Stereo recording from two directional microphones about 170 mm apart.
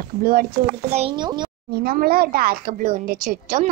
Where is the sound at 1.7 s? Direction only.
65° right (ahead or behind).